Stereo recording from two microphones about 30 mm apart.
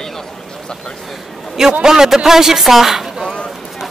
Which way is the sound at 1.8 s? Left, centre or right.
Centre.